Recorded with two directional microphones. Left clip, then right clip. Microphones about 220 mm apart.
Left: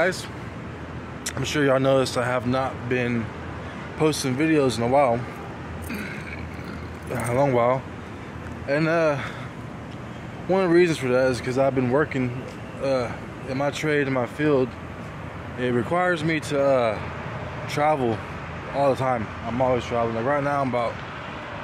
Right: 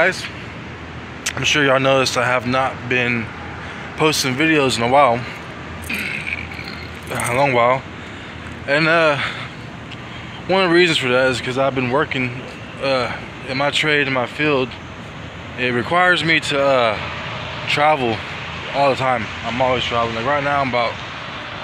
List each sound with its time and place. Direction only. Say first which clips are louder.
0.0 s speech: right 6 dB; 10° left (ahead or behind)
7.1 s speech: right 5 dB; 20° left (ahead or behind)
10.5 s speech: right 5 dB; 10° left (ahead or behind)
12.8 s speech: right 5 dB; 5° left (ahead or behind)